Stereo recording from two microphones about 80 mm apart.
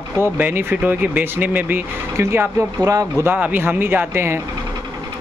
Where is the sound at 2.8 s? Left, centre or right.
Right.